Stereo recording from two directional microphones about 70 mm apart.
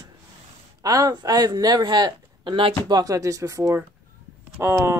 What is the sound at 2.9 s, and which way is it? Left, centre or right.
Speech, right.